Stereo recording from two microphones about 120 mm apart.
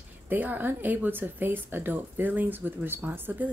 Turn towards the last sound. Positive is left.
turn(degrees=-15)  # may be behind; listen again after turning